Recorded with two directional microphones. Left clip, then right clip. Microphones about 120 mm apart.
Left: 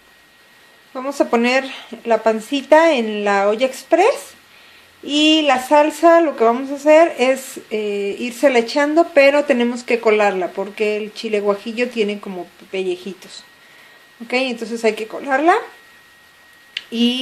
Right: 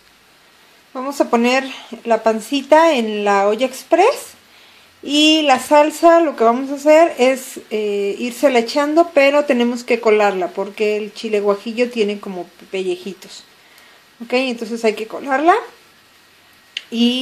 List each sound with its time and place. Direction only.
0.9 s speech: 10° right (ahead or behind)
7.4 s speech: centre (ahead or behind)
7.8 s speech: 10° right (ahead or behind)